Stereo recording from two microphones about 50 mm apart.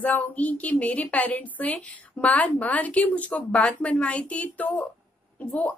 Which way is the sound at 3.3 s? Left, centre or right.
Centre.